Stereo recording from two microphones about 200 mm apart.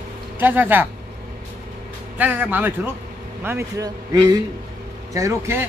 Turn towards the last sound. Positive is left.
turn(degrees=-10)  # may be behind; listen again after turning